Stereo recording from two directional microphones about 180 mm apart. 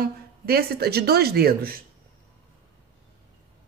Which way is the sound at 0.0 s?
60° right (ahead or behind).